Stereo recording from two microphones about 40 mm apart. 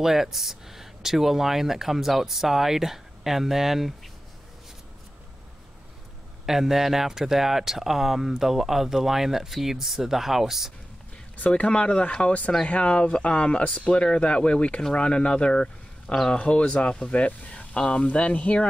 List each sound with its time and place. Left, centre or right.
0.0 s speech: centre
6.4 s speech: centre
11.3 s speech: left
11.6 s speech: left